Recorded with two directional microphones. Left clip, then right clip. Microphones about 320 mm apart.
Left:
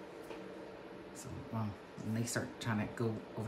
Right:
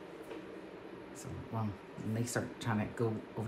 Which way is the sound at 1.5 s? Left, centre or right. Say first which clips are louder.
Right 3 dB; centre.